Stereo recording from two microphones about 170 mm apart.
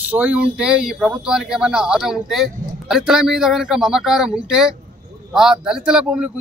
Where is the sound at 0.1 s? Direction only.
10° right (ahead or behind).